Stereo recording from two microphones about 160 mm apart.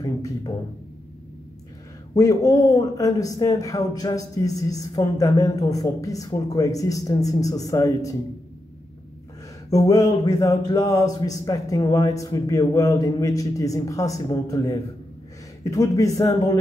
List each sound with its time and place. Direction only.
0.0 s music: 20° left (ahead or behind)
2.1 s speech: 20° left (ahead or behind)
9.7 s speech: 20° left (ahead or behind)